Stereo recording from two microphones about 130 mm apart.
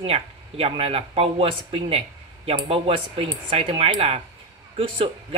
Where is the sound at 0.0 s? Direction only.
50° right (ahead or behind).